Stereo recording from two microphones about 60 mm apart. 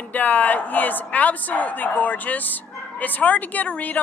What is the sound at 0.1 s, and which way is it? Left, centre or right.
A woman's voice, left.